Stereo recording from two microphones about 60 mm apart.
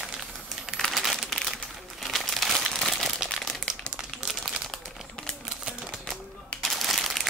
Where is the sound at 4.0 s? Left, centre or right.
Centre.